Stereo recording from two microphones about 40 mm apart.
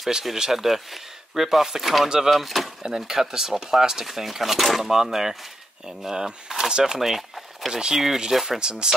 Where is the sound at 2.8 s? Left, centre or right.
Centre.